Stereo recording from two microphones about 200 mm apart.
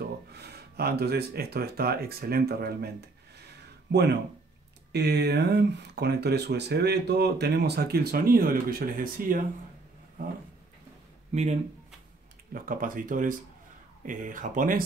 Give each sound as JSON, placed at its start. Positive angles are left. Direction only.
{"t": 0.0, "sound": "speech", "side_deg": -55}
{"t": 3.9, "sound": "speech", "side_deg": -65}
{"t": 11.3, "sound": "speech", "side_deg": -30}
{"t": 12.5, "sound": "speech", "side_deg": -45}